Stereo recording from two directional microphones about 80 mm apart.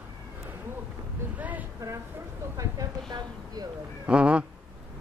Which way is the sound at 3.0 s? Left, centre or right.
Right.